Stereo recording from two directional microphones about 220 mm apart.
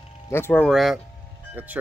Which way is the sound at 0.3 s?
10° left (ahead or behind).